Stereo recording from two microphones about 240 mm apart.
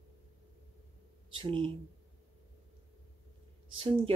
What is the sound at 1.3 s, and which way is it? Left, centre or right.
Speech, right.